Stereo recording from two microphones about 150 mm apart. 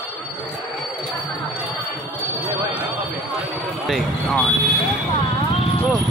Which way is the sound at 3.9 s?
5° left (ahead or behind).